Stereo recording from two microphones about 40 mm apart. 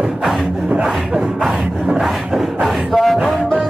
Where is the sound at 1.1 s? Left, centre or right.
Right.